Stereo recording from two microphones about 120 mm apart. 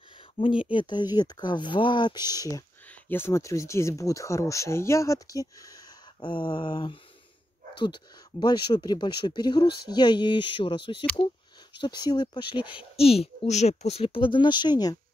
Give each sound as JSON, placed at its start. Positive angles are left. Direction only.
{"t": 0.7, "sound": "speech", "side_deg": 40}
{"t": 2.9, "sound": "speech", "side_deg": 20}
{"t": 6.2, "sound": "a woman's voice", "side_deg": 40}